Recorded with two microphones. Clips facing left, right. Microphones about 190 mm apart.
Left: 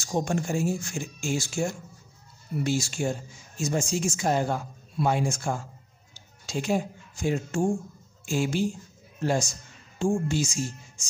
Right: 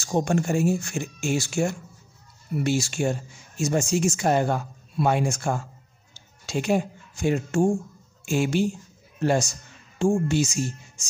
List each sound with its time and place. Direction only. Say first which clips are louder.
0.0 s speech: right 4 dB; 65° right (ahead or behind)